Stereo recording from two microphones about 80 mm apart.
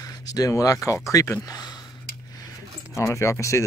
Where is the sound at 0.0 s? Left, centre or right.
Left.